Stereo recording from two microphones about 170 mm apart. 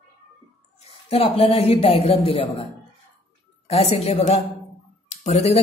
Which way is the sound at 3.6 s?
35° left (ahead or behind).